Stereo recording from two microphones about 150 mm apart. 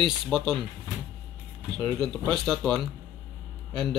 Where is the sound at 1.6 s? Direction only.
5° left (ahead or behind).